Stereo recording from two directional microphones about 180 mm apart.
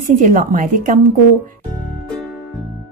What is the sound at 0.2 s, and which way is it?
Speech, 45° right (ahead or behind).